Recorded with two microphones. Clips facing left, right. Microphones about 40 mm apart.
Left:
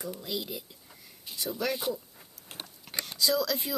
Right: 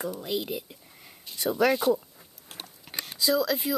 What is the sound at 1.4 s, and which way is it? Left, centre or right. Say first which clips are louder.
Speech: right 9 dB; right.